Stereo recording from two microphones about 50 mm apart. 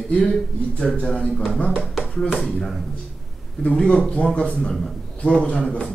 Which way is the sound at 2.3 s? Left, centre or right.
Centre.